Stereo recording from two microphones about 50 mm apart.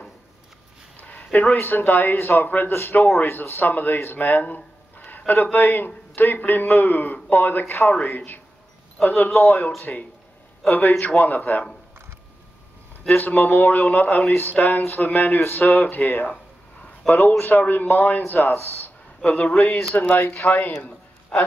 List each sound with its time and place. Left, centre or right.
1.0 s a man's voice: left
9.0 s a man's voice: left
9.9 s a man's voice: left
13.1 s a man's voice: left
19.2 s a man's voice: left